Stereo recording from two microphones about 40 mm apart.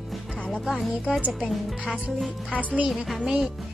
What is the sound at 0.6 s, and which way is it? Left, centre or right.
A woman's voice, centre.